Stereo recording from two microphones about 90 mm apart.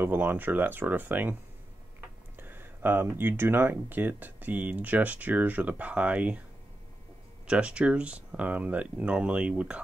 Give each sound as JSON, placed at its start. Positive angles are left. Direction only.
{"t": 0.0, "sound": "speech", "side_deg": -20}
{"t": 2.3, "sound": "speech", "side_deg": -25}
{"t": 7.4, "sound": "speech", "side_deg": -10}